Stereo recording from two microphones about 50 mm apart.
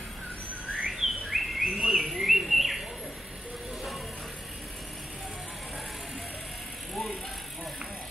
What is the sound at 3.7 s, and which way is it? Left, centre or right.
Music, centre.